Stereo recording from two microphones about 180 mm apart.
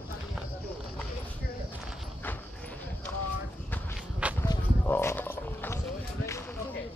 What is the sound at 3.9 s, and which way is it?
Walk, 5° right (ahead or behind).